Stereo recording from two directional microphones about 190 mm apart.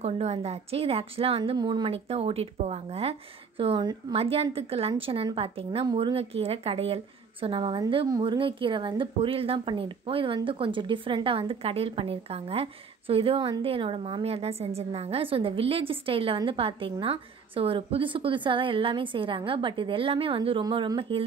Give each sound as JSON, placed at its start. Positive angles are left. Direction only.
{"t": 0.0, "sound": "a woman's voice", "side_deg": -35}